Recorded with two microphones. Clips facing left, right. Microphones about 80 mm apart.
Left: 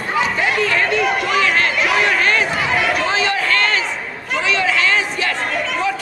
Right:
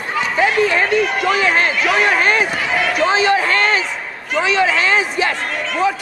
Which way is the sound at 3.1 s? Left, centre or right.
Centre.